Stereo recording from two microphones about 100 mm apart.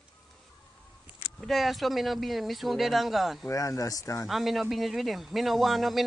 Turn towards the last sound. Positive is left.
turn(degrees=0)  # may be behind; listen again after turning